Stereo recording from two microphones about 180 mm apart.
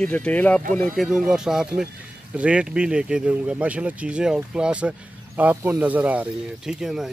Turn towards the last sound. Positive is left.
turn(degrees=0)  # may be behind; listen again after turning